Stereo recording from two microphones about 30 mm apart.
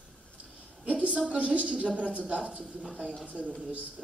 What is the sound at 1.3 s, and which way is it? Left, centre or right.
A man's voice, right.